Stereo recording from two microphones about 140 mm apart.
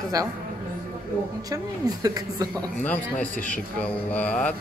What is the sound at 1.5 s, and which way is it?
Speech, 25° right (ahead or behind).